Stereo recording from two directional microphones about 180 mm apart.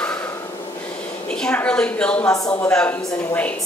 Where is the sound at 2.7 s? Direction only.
5° left (ahead or behind).